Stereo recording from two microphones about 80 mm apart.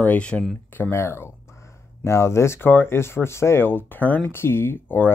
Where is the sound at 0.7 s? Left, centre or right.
Left.